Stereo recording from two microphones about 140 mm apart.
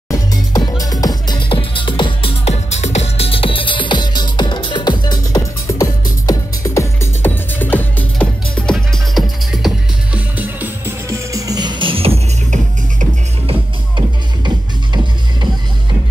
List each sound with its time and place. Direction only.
0.1 s music: 25° left (ahead or behind)
2.4 s music: 50° left (ahead or behind); by 8.7 s 10° left (ahead or behind)
8.7 s music: centre (ahead or behind)
10.1 s music: 10° right (ahead or behind); by 12.5 s 45° right (ahead or behind)
13.5 s music: 35° right (ahead or behind)